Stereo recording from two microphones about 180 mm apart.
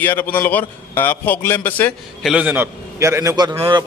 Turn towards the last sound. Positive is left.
turn(degrees=-25)  # may be behind; listen again after turning